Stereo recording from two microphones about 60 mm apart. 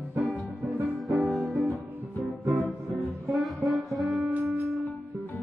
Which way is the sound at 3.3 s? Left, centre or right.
Centre.